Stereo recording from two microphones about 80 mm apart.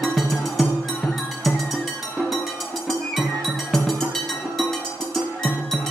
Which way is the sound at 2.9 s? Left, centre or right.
Centre.